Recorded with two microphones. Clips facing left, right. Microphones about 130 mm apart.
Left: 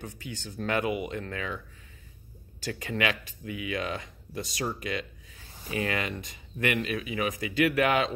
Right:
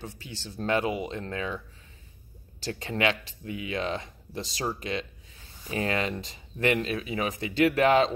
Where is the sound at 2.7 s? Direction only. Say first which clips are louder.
Right 2 dB; 30° right (ahead or behind).